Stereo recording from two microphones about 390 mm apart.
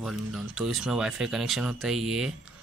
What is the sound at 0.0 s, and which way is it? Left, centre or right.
Speech, centre.